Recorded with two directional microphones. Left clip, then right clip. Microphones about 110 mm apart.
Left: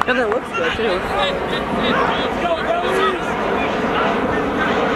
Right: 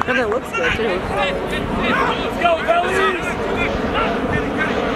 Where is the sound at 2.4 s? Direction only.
40° right (ahead or behind).